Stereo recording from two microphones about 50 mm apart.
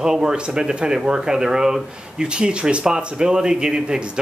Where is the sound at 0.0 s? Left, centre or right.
Centre.